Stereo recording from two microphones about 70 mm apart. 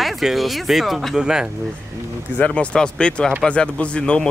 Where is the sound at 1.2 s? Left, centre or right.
Centre.